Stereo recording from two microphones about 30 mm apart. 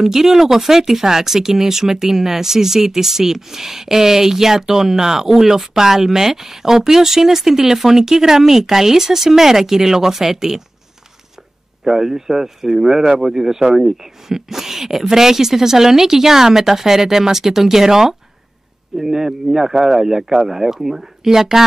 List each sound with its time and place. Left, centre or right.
0.0 s speech: centre
11.8 s speech: centre